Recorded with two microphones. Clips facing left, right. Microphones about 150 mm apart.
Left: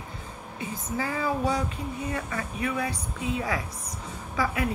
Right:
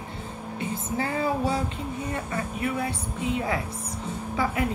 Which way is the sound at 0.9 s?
30° right (ahead or behind).